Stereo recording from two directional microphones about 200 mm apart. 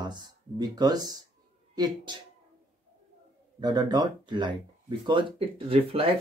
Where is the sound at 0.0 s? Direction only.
20° right (ahead or behind).